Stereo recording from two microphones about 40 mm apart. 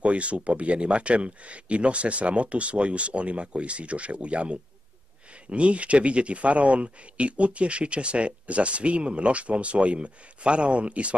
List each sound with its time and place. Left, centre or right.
0.0 s speech: right